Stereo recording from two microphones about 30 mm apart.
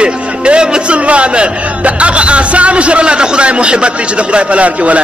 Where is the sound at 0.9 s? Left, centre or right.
Right.